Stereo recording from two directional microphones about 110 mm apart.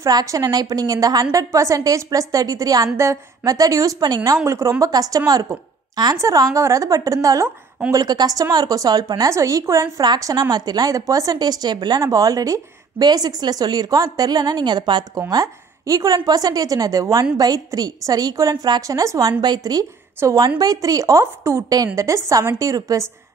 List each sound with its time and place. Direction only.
0.0 s a woman's voice: 30° right (ahead or behind)
9.3 s a woman's voice: 30° right (ahead or behind)